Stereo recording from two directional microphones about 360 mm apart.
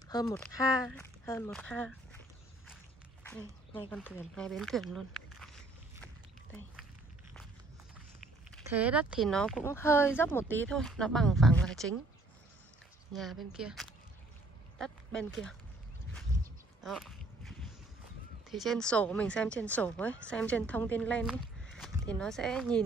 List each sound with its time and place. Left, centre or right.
0.1 s speech: centre
3.7 s speech: centre
8.5 s speech: centre
13.1 s speech: centre
16.8 s a sound: centre
18.5 s speech: centre